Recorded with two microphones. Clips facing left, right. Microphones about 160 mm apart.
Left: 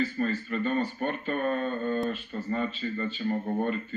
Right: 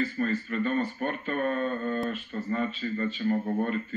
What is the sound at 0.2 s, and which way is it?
Speech, 35° left (ahead or behind).